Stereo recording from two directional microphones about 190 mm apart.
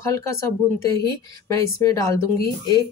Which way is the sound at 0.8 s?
20° left (ahead or behind).